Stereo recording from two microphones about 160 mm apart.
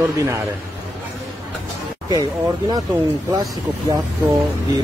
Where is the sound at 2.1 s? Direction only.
25° right (ahead or behind).